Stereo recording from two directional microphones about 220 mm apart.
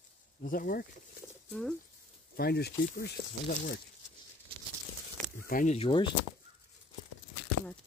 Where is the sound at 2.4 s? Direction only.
45° left (ahead or behind).